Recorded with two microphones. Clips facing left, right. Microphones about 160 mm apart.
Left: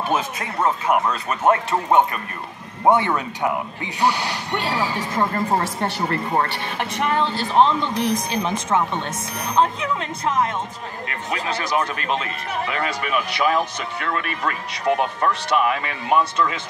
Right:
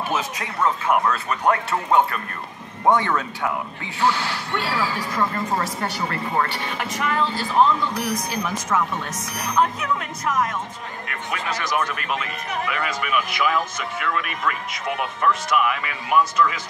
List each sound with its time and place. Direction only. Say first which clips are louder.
0.8 s speech: even; 10° left (ahead or behind)
1.3 s speech: left 5 dB; 20° left (ahead or behind)
6.0 s speech: left 2 dB; 35° left (ahead or behind)